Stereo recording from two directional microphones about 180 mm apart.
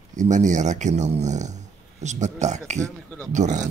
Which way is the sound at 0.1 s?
45° right (ahead or behind).